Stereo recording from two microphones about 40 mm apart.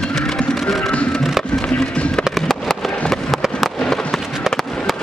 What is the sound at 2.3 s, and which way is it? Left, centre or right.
Fireworks, centre.